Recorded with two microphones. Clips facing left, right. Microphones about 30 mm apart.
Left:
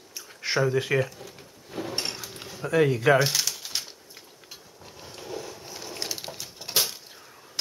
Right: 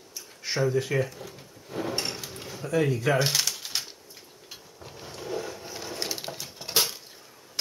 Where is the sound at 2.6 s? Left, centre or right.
Left.